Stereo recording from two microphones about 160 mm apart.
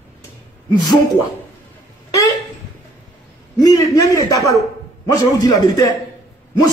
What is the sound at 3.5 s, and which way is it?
A man's voice, 20° left (ahead or behind).